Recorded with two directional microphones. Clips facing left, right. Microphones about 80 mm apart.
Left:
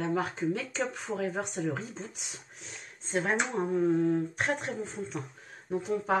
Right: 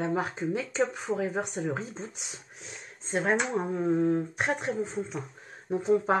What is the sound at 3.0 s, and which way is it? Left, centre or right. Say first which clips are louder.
Speech: right 2 dB; centre.